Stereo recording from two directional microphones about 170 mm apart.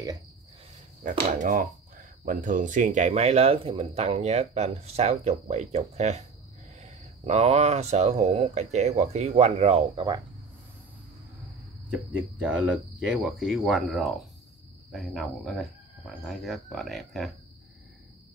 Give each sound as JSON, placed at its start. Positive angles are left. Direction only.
{"t": 1.0, "sound": "speech", "side_deg": -50}
{"t": 11.9, "sound": "speech", "side_deg": -5}